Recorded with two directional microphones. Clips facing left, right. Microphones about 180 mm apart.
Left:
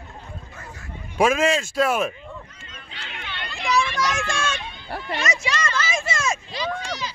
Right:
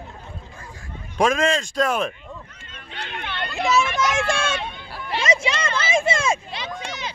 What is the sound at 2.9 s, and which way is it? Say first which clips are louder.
Hubbub: right 6 dB; 60° right (ahead or behind).